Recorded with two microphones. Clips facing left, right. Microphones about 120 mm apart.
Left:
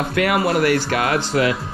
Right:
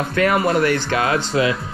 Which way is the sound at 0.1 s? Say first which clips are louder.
Right 2 dB; 35° right (ahead or behind).